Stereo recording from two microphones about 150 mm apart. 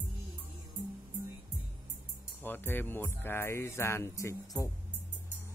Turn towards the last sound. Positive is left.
turn(degrees=20)  # may be behind; listen again after turning